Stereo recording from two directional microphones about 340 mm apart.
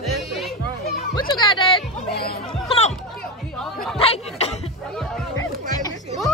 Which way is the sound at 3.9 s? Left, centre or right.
Centre.